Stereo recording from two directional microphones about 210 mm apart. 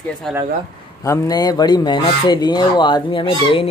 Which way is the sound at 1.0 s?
15° left (ahead or behind).